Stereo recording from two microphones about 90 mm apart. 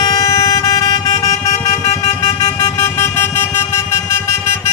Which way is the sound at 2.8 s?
25° left (ahead or behind).